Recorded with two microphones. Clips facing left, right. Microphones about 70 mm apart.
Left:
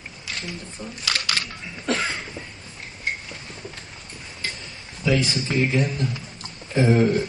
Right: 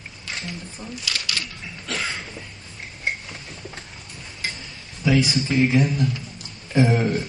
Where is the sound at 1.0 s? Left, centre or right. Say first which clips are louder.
Left 4 dB; left.